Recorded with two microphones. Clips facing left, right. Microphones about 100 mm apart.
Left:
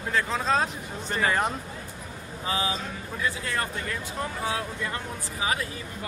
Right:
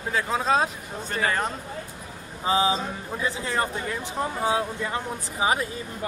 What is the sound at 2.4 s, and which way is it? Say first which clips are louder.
Speech: right 6 dB; 25° right (ahead or behind).